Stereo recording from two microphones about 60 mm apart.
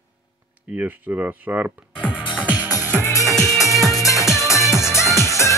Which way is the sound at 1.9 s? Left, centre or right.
Centre.